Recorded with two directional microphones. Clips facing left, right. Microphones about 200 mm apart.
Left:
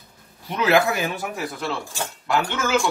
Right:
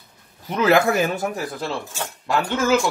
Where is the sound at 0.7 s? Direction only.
45° right (ahead or behind).